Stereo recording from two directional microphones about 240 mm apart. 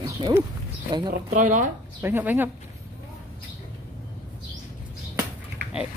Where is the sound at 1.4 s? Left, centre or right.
Right.